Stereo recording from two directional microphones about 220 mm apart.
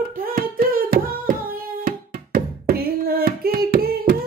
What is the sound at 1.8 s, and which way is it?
Music, 40° right (ahead or behind).